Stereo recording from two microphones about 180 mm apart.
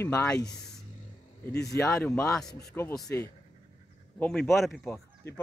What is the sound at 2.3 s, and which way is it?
Speech, 5° left (ahead or behind).